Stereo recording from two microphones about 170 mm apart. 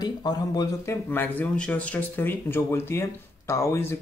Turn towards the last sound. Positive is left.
turn(degrees=15)  # may be behind; listen again after turning